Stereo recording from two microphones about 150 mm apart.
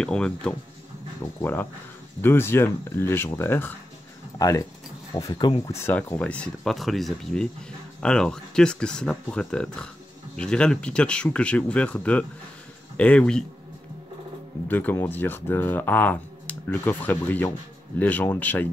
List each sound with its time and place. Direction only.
0.0 s speech: 5° left (ahead or behind)
14.7 s speech: 10° left (ahead or behind)